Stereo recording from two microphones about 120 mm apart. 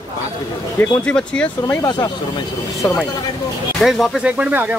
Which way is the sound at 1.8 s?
30° left (ahead or behind).